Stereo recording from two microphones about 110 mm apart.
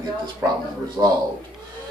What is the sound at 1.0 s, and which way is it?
Speech, 35° right (ahead or behind).